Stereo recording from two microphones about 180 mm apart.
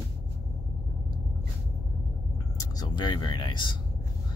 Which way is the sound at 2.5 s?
20° left (ahead or behind).